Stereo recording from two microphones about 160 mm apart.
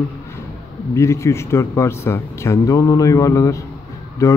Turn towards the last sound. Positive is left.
turn(degrees=20)  # may be behind; listen again after turning